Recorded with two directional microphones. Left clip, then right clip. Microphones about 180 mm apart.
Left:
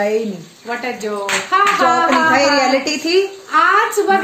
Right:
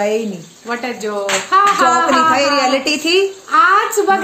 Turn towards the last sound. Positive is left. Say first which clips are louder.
# right 1 dB
turn(degrees=-20)  # may be behind; listen again after turning